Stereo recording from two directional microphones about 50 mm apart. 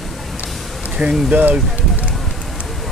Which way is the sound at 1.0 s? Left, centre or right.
Right.